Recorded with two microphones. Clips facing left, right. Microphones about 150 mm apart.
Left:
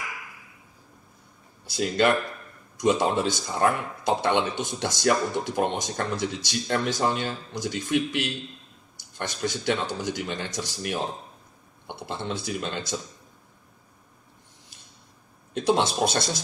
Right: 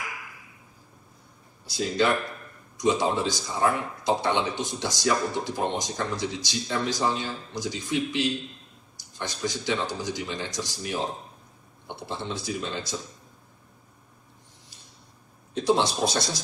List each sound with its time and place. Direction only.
1.7 s speech: 60° left (ahead or behind)
15.5 s speech: 55° left (ahead or behind)